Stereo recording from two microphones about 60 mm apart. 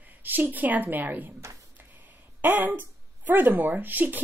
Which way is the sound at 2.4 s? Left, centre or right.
Right.